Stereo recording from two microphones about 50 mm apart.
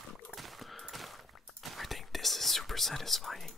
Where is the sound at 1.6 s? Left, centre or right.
Centre.